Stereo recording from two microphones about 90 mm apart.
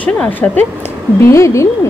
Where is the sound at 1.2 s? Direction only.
35° left (ahead or behind).